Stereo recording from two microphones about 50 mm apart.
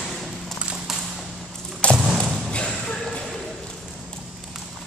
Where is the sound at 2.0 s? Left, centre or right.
Centre.